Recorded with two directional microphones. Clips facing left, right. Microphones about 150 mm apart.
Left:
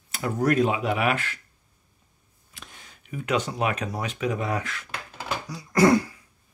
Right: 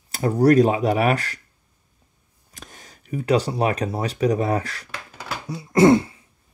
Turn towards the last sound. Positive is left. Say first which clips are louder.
# right 4 dB
turn(degrees=-25)  # may be behind; listen again after turning